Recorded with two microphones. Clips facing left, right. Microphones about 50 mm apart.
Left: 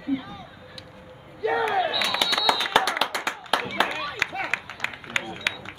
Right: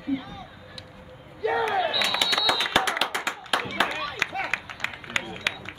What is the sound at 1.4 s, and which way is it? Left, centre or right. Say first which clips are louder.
Battle cry: left 1 dB; centre.